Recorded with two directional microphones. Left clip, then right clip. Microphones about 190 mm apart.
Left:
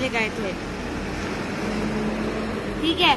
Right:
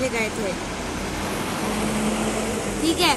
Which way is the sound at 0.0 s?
Centre (ahead or behind).